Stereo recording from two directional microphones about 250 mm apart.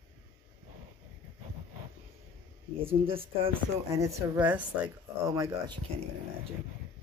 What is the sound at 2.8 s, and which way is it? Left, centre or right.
Speech, right.